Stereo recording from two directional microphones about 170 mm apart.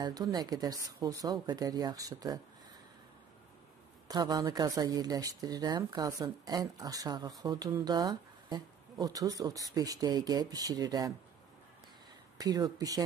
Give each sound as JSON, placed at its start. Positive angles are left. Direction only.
{"t": 0.0, "sound": "speech", "side_deg": -25}
{"t": 4.1, "sound": "speech", "side_deg": -25}
{"t": 12.4, "sound": "speech", "side_deg": -20}